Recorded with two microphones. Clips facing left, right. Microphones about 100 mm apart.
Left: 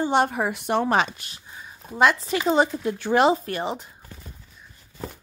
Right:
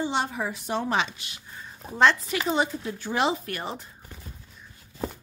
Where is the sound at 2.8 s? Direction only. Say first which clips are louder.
Left 7 dB; 65° left (ahead or behind).